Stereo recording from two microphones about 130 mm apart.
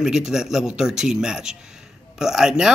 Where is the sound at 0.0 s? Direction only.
5° right (ahead or behind).